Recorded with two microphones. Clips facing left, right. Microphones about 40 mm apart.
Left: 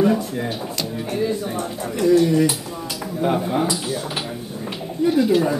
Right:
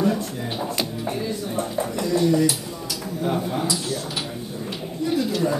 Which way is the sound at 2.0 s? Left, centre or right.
Left.